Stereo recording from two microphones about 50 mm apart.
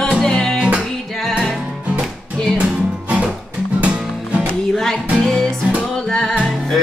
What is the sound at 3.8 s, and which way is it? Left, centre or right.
Music, right.